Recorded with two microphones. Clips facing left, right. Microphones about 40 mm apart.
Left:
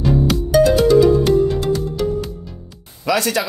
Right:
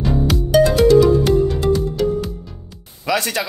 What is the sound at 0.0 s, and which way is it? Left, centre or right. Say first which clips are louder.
Music: left 2 dB; centre.